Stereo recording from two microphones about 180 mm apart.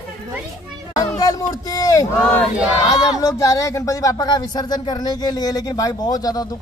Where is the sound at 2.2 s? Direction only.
5° left (ahead or behind).